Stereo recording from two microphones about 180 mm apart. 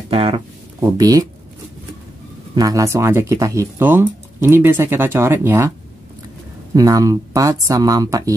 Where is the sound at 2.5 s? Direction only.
20° right (ahead or behind).